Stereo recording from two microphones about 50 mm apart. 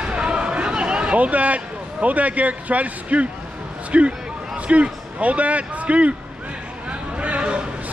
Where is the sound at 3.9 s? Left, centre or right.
Right.